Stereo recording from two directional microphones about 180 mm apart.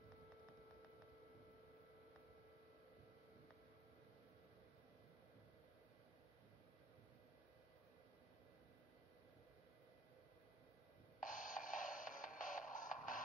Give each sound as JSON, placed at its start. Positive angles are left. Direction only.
{"t": 11.1, "sound": "music", "side_deg": 50}